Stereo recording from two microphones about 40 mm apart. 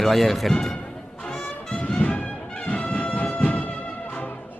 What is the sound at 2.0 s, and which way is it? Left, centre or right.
Music, left.